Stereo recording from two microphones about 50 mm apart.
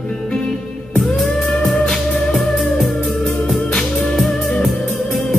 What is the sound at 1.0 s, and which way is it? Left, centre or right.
Music, centre.